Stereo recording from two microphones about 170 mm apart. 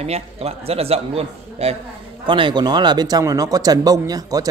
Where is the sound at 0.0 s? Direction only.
40° right (ahead or behind).